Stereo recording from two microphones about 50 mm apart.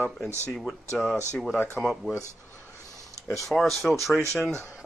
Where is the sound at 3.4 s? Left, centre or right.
Centre.